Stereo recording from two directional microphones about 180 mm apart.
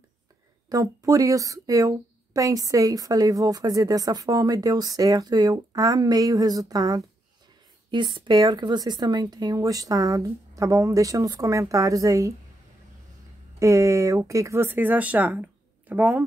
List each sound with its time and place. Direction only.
0.7 s speech: 20° right (ahead or behind)
13.6 s speech: 15° right (ahead or behind)